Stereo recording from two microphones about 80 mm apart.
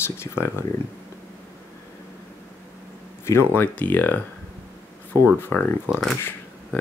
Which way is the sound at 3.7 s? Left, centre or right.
Left.